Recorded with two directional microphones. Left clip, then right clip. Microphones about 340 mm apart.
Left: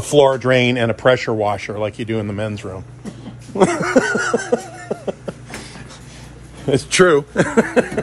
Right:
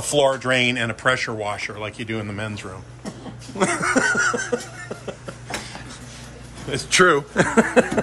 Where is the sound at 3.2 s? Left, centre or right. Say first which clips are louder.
Left 7 dB; centre.